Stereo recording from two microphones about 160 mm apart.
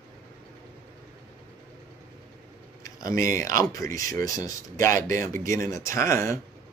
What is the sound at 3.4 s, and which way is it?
Speech, 20° left (ahead or behind).